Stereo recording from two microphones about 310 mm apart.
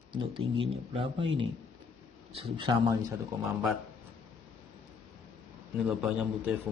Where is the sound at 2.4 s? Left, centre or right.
Centre.